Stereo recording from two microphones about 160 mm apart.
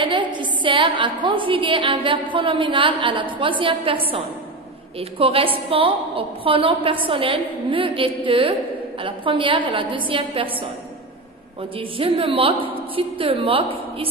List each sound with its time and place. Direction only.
0.0 s a woman's voice: 30° right (ahead or behind)
5.2 s a woman's voice: 35° right (ahead or behind)
12.0 s a woman's voice: 35° right (ahead or behind)